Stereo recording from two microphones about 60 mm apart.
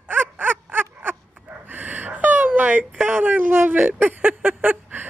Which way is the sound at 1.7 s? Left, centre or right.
Right.